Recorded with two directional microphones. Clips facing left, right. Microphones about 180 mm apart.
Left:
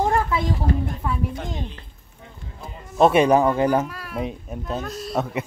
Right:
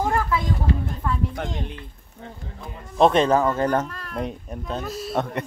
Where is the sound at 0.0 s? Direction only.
25° left (ahead or behind).